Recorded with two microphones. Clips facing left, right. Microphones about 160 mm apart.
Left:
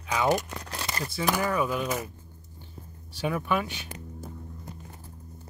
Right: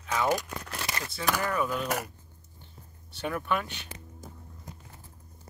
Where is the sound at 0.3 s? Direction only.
35° left (ahead or behind).